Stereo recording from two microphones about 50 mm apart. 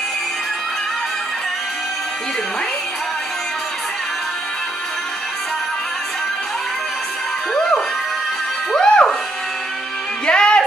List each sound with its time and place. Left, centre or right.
8.7 s music: centre
10.2 s music: centre